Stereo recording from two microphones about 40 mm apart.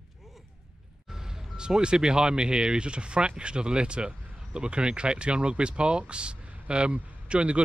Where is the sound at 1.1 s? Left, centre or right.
Centre.